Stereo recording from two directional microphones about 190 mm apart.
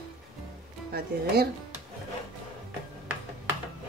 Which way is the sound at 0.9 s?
55° right (ahead or behind).